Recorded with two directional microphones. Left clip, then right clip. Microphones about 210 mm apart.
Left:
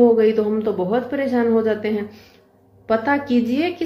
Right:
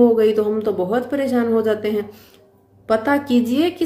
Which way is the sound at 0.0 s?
20° right (ahead or behind).